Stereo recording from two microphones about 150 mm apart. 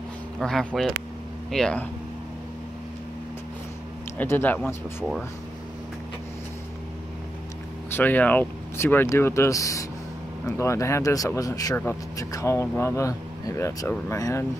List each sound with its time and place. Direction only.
0.4 s speech: 5° left (ahead or behind)
4.2 s speech: 15° left (ahead or behind)
7.9 s speech: 10° left (ahead or behind)
11.7 s speech: 10° left (ahead or behind)
12.2 s speech: 20° left (ahead or behind)